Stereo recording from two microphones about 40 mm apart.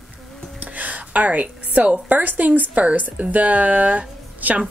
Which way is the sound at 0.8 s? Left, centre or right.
Right.